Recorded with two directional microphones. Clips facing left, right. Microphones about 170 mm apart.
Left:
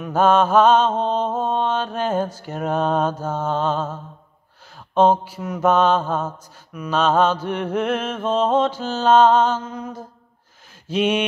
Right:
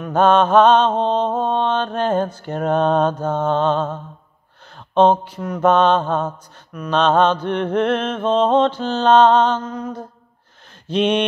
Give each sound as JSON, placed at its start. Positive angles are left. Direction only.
{"t": 0.0, "sound": "mantra", "side_deg": 5}